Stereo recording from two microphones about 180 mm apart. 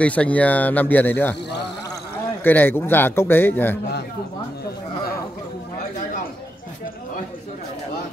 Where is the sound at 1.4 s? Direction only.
70° left (ahead or behind).